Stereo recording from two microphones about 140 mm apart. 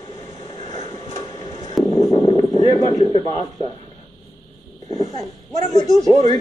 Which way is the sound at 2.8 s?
30° left (ahead or behind).